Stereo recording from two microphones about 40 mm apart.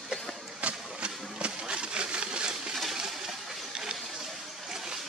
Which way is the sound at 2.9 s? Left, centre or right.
Centre.